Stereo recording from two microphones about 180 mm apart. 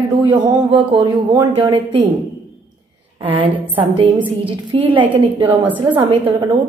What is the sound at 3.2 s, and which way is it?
A woman's voice, 30° right (ahead or behind).